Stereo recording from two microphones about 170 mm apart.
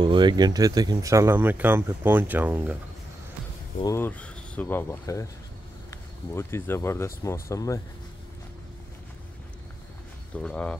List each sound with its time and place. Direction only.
0.0 s speech: 25° right (ahead or behind); by 2.8 s 10° right (ahead or behind)
3.8 s speech: 15° left (ahead or behind)
10.3 s speech: 5° left (ahead or behind)